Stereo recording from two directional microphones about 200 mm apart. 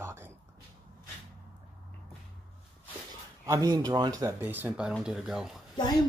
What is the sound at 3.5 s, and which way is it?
Speech, 20° right (ahead or behind).